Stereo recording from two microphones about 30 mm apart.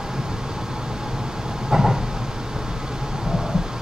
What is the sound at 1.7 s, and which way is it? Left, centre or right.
Vehicle, centre.